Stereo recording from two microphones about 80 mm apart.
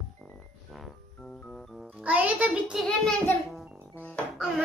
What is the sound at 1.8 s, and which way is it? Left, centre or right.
Music, centre.